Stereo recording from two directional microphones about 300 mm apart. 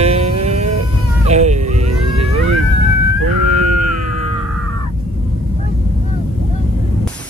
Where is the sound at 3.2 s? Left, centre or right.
Right.